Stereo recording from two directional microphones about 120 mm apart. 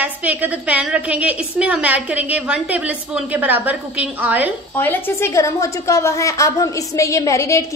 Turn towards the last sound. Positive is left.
turn(degrees=25)  # may be behind; listen again after turning